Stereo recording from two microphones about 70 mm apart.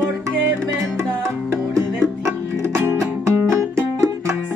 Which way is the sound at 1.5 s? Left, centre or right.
Right.